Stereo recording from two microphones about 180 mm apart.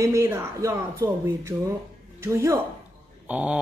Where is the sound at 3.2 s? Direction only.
5° right (ahead or behind).